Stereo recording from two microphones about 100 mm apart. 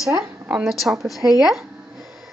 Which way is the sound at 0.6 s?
Centre (ahead or behind).